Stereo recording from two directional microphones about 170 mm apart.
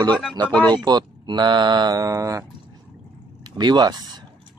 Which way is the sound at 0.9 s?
25° right (ahead or behind).